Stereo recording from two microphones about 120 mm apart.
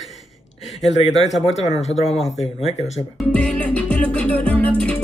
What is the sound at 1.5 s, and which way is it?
Speech, 65° left (ahead or behind).